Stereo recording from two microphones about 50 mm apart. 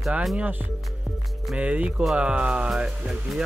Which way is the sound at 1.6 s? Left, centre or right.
Right.